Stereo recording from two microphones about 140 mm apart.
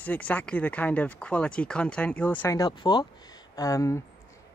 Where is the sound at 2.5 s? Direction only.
30° left (ahead or behind).